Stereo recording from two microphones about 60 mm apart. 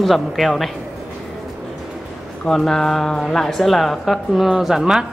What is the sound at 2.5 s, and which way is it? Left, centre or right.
Speech, centre.